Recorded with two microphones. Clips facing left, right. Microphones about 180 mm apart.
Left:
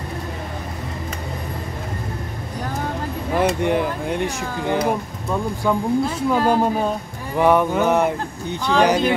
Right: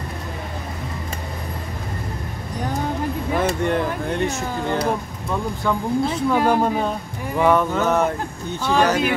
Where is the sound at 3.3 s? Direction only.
15° left (ahead or behind).